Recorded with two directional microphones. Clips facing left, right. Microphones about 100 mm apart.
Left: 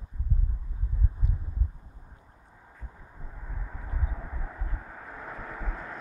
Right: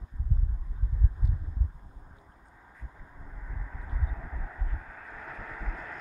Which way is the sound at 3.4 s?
20° left (ahead or behind).